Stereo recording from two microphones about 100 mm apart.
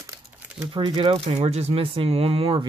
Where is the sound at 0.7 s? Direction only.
55° right (ahead or behind).